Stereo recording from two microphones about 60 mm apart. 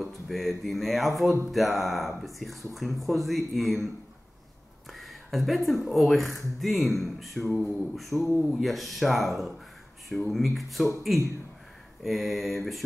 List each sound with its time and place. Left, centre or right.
0.0 s speech: centre
4.9 s speech: centre
7.4 s a sound: left
7.7 s speech: centre
12.0 s speech: centre